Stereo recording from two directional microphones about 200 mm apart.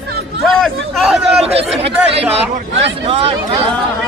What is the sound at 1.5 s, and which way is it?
Speech, 30° right (ahead or behind).